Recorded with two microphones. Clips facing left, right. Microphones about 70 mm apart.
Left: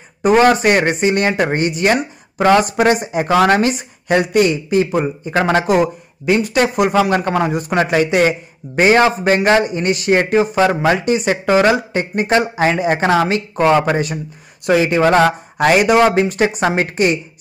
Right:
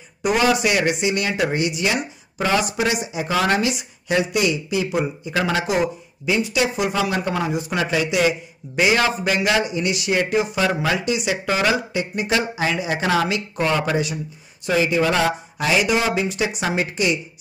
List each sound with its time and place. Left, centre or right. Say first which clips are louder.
0.2 s speech: left 7 dB; left
14.7 s speech: left 6 dB; left